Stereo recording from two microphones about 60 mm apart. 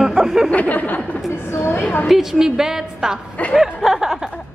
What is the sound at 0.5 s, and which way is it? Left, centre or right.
Speech, left.